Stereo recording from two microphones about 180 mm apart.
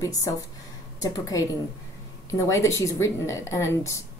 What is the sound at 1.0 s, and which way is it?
A woman's voice, 20° left (ahead or behind).